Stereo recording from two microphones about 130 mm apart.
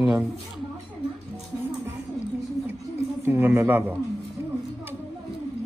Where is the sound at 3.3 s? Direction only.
20° right (ahead or behind).